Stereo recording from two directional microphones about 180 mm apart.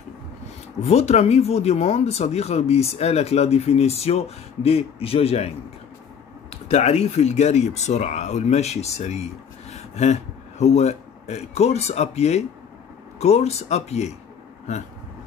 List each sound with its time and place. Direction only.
0.8 s speech: 35° left (ahead or behind)
6.5 s speech: 40° left (ahead or behind)